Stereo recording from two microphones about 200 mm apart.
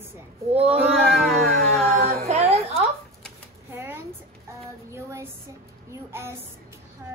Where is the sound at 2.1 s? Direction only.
30° right (ahead or behind).